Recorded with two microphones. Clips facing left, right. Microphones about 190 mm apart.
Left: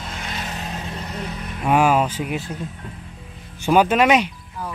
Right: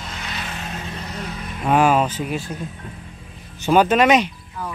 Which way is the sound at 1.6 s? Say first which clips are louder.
Right 1 dB; 10° left (ahead or behind).